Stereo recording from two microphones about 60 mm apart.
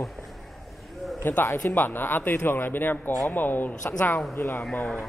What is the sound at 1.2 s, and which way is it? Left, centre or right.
A man's voice, left.